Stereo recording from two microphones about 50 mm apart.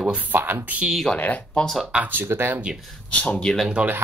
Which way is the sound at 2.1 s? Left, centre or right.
Right.